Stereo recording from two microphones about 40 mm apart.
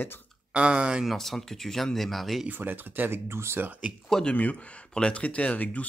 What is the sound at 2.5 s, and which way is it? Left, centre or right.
Speech, right.